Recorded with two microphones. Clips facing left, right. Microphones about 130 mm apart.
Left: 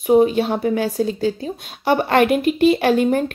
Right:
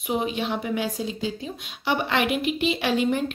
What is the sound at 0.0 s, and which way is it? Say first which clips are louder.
A woman's voice: left 12 dB; 45° left (ahead or behind).